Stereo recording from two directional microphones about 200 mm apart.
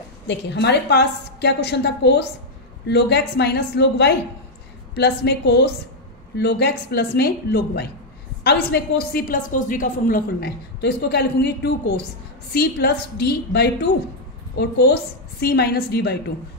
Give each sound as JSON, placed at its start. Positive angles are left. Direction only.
{"t": 0.3, "sound": "a woman's voice", "side_deg": 60}